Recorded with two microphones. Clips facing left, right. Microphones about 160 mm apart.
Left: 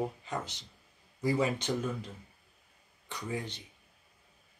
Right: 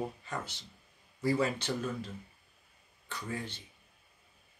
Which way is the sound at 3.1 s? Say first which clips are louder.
Left 2 dB; 15° left (ahead or behind).